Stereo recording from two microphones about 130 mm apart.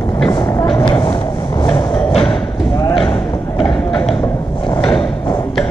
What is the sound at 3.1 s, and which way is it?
Thump, 40° left (ahead or behind).